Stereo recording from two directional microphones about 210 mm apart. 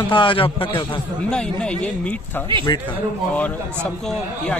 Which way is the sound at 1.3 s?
5° left (ahead or behind).